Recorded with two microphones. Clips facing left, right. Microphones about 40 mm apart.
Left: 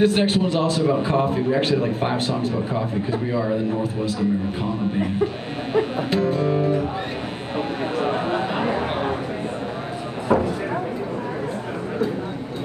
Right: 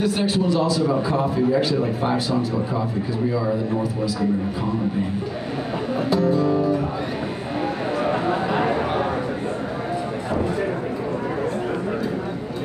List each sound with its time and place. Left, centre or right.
0.0 s a man's voice: left
5.9 s a man's voice: left